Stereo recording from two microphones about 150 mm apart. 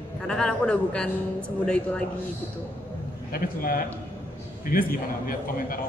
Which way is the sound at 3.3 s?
75° left (ahead or behind).